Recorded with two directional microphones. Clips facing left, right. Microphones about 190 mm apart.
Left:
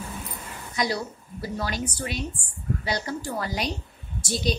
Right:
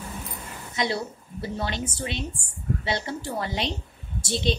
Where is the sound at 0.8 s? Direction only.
25° right (ahead or behind).